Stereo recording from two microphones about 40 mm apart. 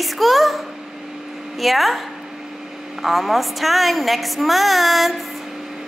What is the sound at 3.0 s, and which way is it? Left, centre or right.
A child's voice, centre.